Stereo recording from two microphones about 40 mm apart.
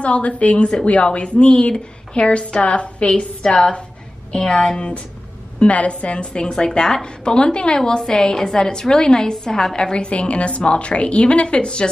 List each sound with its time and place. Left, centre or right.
0.0 s a woman's voice: left